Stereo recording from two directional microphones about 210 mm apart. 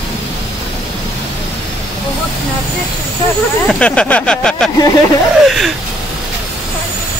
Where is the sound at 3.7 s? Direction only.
5° left (ahead or behind).